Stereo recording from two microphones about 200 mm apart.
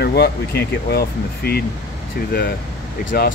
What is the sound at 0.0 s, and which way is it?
Speech, 55° left (ahead or behind).